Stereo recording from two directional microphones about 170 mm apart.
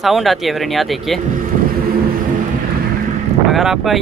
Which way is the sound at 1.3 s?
55° right (ahead or behind).